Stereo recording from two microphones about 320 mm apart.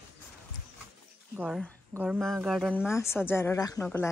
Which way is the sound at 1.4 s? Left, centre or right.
Centre.